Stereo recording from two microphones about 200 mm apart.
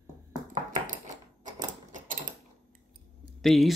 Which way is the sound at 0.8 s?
40° right (ahead or behind).